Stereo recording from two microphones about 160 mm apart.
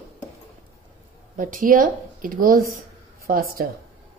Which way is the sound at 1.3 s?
60° right (ahead or behind).